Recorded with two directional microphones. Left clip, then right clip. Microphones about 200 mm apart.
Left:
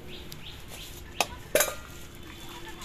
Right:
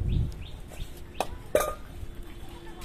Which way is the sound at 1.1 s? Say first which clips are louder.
Even; 45° right (ahead or behind).